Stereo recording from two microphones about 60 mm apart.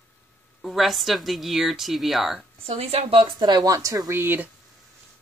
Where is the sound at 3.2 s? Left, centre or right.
Right.